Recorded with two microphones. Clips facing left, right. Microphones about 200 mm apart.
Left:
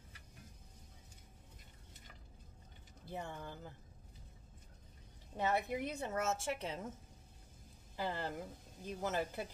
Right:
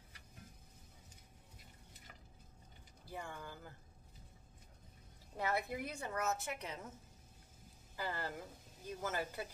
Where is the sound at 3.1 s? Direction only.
25° left (ahead or behind).